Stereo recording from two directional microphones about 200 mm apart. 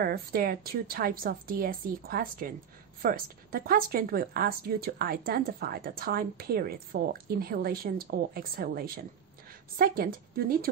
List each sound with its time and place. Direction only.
0.0 s speech: 50° right (ahead or behind)